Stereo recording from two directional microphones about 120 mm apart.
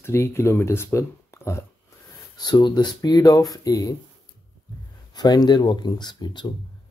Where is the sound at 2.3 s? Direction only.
40° left (ahead or behind).